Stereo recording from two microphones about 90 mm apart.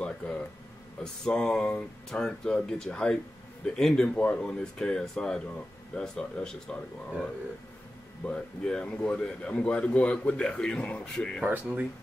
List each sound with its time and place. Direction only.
0.0 s a sound: 10° left (ahead or behind)
1.0 s speech: 10° left (ahead or behind)
8.3 s speech: 10° left (ahead or behind)
11.4 s speech: 15° right (ahead or behind)